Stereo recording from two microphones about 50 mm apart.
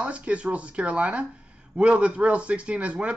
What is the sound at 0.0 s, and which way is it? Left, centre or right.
Speech, right.